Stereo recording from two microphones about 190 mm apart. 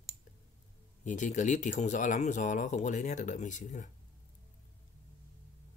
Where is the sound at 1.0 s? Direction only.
40° left (ahead or behind).